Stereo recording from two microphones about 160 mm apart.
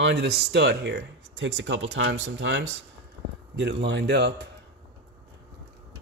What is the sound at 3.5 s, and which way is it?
Speech, 90° right.